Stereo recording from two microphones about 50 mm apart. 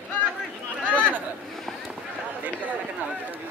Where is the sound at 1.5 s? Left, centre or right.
Centre.